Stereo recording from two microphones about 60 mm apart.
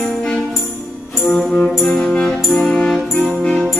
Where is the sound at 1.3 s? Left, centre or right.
Centre.